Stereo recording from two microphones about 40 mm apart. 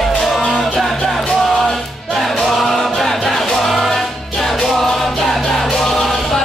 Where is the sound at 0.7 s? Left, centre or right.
Centre.